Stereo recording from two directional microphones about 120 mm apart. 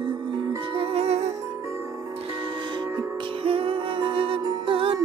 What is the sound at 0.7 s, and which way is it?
Music, 55° right (ahead or behind).